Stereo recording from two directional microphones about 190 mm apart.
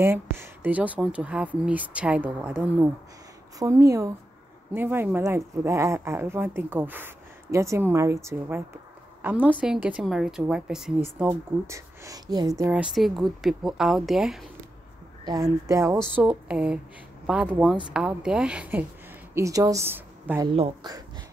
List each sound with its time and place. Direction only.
0.0 s a woman's voice: 10° right (ahead or behind)
11.1 s speech: 15° right (ahead or behind)
12.8 s a woman's voice: centre (ahead or behind)
15.2 s a woman's voice: 20° right (ahead or behind)
20.5 s speech: 30° right (ahead or behind)